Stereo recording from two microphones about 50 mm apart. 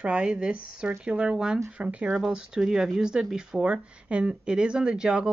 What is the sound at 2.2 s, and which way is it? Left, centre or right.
Speech, centre.